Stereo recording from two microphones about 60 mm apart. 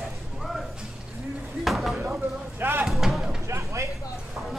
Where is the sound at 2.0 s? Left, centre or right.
Right.